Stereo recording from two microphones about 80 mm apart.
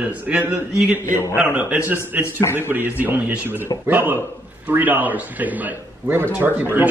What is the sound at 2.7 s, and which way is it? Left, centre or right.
A man's voice, right.